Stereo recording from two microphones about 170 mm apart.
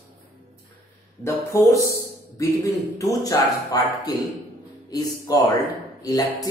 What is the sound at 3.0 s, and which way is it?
Speech, 20° left (ahead or behind).